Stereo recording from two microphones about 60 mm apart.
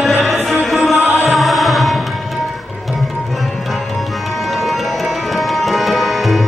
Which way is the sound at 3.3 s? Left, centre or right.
Centre.